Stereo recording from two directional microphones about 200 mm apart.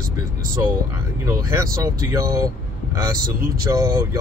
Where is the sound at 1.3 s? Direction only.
15° right (ahead or behind).